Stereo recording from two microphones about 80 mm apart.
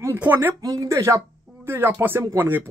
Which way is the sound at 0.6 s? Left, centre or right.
Right.